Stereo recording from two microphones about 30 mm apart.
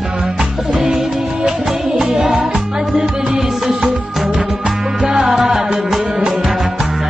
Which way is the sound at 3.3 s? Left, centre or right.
Centre.